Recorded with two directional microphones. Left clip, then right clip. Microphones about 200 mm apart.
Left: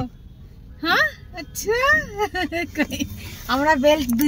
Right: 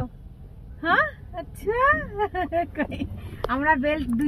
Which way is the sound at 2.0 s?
20° right (ahead or behind).